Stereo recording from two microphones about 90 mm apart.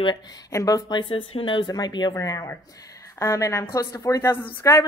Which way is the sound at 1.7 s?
50° left (ahead or behind).